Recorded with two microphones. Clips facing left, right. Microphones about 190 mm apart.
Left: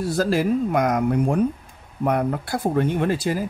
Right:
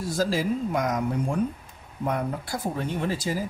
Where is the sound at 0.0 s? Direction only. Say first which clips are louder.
Left 5 dB; 60° left (ahead or behind).